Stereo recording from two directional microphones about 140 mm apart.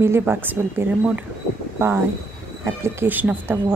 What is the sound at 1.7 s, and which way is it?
Speech, 15° right (ahead or behind).